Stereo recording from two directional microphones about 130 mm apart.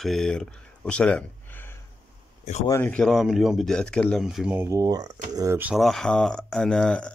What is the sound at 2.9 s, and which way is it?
Speech, 5° left (ahead or behind).